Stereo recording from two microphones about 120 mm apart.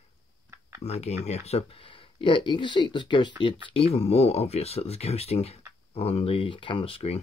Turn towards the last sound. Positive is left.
turn(degrees=55)  # may be behind; listen again after turning